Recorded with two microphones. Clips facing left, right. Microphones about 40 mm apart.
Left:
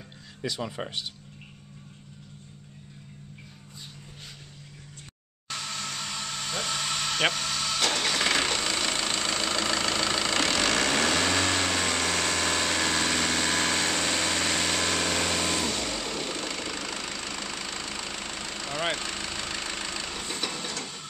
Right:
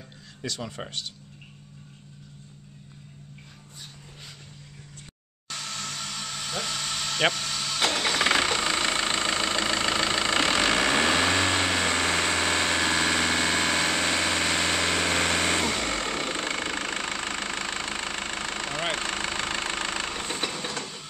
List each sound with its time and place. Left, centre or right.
0.4 s speech: centre
5.5 s vehicle: centre
5.8 s a sound: centre
7.3 s vehicle: centre
7.8 s vehicle: centre; by 20.4 s right
20.4 s printer: centre
20.8 s printer: centre